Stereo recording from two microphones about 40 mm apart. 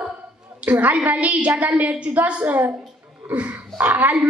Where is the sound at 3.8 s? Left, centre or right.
Right.